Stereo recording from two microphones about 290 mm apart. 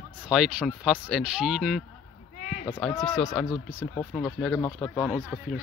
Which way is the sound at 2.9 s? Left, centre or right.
Centre.